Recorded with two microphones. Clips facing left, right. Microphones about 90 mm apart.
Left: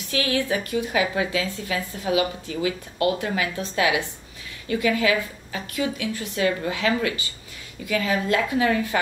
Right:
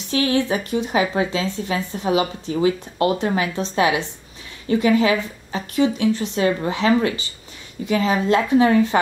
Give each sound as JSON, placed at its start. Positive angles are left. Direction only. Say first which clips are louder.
{"t": 0.1, "sound": "speech", "louder": "right 4 dB", "side_deg": -25}